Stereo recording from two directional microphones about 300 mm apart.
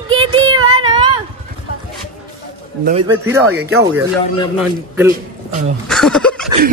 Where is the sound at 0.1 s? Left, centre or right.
Centre.